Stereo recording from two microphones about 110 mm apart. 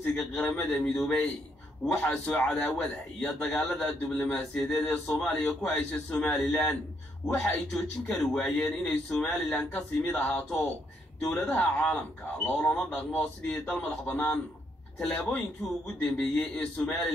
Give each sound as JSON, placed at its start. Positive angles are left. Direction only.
{"t": 0.1, "sound": "a man's voice", "side_deg": 5}